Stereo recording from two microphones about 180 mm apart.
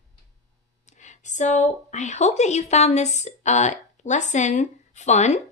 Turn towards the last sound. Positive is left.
turn(degrees=40)  # may be behind; listen again after turning